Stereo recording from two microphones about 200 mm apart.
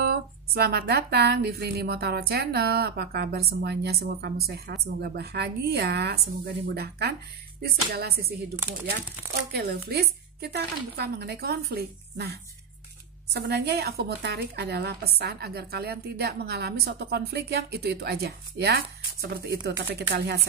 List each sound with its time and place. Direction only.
0.0 s speech: 50° right (ahead or behind)
9.5 s a woman's voice: 50° right (ahead or behind)